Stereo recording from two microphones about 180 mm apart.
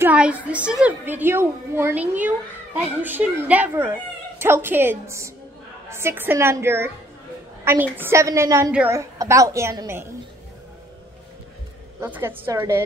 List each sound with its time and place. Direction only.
0.0 s a woman's voice: 10° right (ahead or behind)
12.0 s a woman's voice: 10° right (ahead or behind)